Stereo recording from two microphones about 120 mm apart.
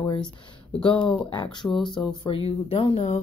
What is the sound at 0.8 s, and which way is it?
Speech, 40° left (ahead or behind).